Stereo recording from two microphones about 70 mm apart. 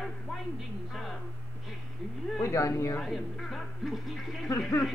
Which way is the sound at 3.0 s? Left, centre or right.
Centre.